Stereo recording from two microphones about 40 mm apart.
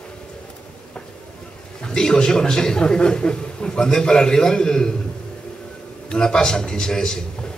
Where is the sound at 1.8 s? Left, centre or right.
Centre.